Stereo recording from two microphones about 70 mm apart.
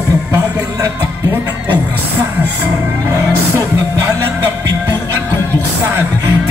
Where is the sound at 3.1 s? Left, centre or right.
Right.